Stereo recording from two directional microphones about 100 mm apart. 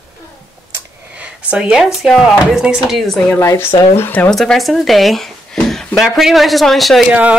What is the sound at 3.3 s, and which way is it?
Speech, 25° left (ahead or behind).